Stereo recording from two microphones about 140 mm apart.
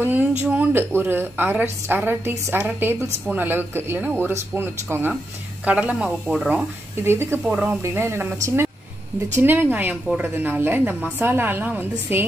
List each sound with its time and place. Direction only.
0.0 s a woman's voice: 15° right (ahead or behind)
7.0 s a woman's voice: 15° right (ahead or behind)
9.3 s a woman's voice: 15° right (ahead or behind)